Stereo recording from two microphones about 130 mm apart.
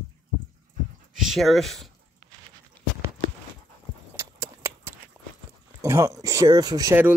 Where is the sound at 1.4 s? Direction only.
Centre (ahead or behind).